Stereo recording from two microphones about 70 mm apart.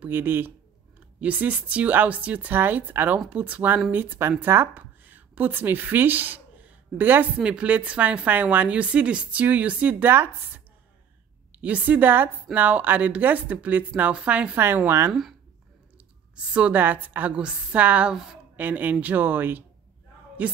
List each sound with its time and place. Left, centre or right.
0.0 s a woman's voice: right
11.6 s a woman's voice: right
14.9 s a woman's voice: right
16.5 s a woman's voice: right
18.1 s a woman's voice: centre
18.6 s a woman's voice: right